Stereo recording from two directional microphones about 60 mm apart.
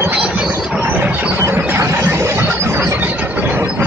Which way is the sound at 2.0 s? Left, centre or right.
Right.